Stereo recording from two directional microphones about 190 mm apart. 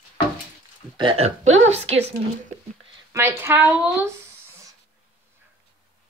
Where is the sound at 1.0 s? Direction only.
30° right (ahead or behind).